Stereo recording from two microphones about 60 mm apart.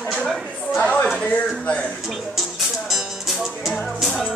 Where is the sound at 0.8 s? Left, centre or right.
Left.